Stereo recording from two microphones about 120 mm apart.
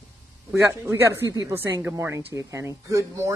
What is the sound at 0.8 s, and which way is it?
Speech, 20° right (ahead or behind).